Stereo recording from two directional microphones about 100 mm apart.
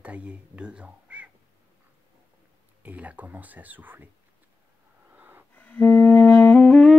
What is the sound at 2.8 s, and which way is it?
Speech, 15° right (ahead or behind).